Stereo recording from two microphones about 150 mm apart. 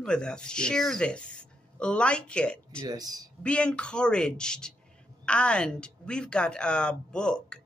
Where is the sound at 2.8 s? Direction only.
25° right (ahead or behind).